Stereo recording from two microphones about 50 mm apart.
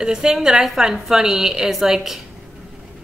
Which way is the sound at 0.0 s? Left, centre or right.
Centre.